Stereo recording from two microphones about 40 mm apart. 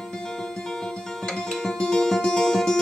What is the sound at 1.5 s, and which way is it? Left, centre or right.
Music, centre.